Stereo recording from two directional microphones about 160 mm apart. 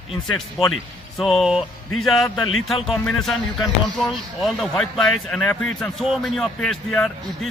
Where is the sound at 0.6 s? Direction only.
Centre (ahead or behind).